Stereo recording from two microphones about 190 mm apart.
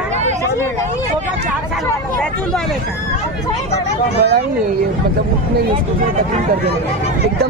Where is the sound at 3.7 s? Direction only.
35° left (ahead or behind).